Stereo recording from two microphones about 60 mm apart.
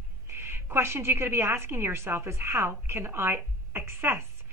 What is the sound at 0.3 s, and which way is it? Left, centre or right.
A woman's voice, right.